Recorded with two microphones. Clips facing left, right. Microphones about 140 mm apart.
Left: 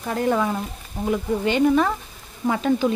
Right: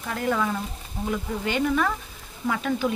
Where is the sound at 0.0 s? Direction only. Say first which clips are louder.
Left 4 dB; 30° left (ahead or behind).